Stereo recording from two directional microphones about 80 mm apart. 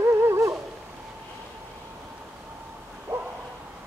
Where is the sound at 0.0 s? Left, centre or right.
Right.